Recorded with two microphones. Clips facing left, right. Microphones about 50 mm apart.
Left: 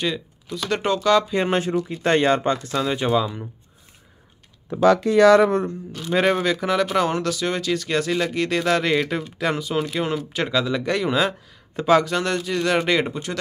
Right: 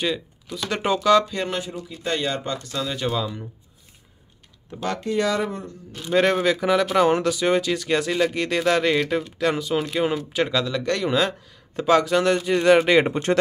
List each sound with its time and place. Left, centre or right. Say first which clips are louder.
0.0 s speech: even; centre
1.3 s speech: left 5 dB; centre
1.7 s speech: left 8 dB; left
2.8 s speech: left 3 dB; left
5.0 s speech: left 7 dB; left
5.9 s speech: even; centre
7.1 s speech: right 4 dB; centre
13.1 s speech: right 7 dB; right